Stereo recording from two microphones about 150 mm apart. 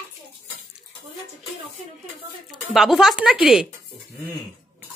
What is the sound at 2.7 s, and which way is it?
Speech, centre (ahead or behind).